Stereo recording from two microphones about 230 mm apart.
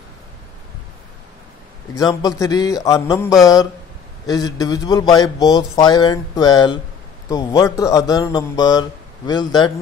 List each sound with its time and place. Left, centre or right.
2.0 s speech: centre